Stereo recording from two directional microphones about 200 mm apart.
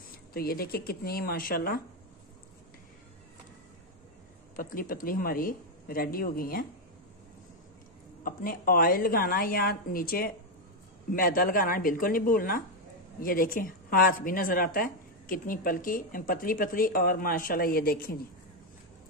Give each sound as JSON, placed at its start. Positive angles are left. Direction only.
{"t": 0.3, "sound": "a woman's voice", "side_deg": 50}
{"t": 4.6, "sound": "a woman's voice", "side_deg": 45}
{"t": 8.2, "sound": "a woman's voice", "side_deg": 45}